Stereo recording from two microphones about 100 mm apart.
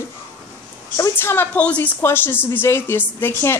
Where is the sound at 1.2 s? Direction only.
20° left (ahead or behind).